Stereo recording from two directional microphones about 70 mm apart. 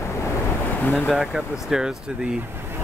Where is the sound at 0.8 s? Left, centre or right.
Left.